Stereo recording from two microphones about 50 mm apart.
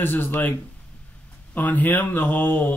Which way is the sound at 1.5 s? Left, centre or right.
Left.